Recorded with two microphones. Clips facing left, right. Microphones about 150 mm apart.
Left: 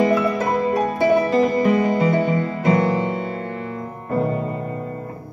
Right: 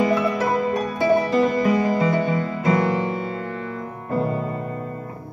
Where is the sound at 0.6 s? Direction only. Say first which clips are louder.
Left 3 dB; 30° left (ahead or behind).